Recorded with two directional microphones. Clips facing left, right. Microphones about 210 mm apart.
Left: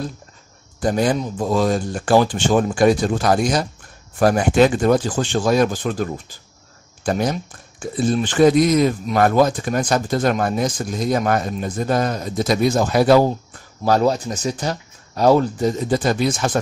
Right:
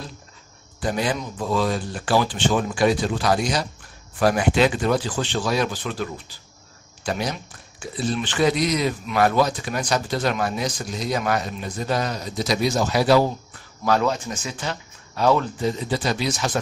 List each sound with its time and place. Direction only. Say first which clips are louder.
0.7 s speech: left 6 dB; 45° left (ahead or behind)
13.8 s speech: left 4 dB; 40° left (ahead or behind)